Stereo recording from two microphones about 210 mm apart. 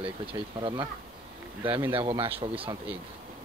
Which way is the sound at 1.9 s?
25° right (ahead or behind).